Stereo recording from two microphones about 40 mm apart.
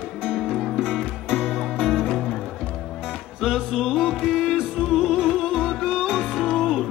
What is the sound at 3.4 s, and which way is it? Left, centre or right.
Music, centre.